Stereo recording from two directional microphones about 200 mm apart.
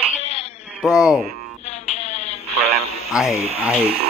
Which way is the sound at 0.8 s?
5° right (ahead or behind).